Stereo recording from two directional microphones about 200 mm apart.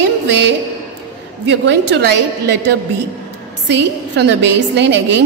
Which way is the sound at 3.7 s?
60° right (ahead or behind).